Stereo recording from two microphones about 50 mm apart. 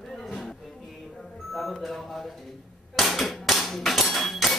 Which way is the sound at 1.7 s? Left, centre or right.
Centre.